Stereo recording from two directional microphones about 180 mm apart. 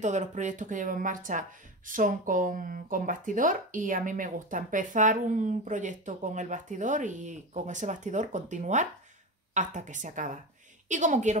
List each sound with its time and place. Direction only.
0.0 s speech: 40° right (ahead or behind)